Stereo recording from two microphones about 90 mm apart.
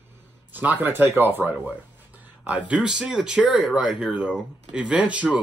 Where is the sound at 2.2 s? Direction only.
15° right (ahead or behind).